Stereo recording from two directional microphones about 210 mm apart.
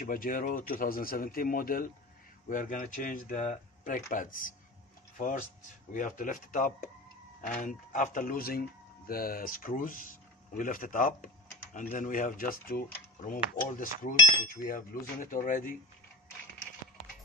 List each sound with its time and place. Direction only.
0.0 s speech: 40° left (ahead or behind)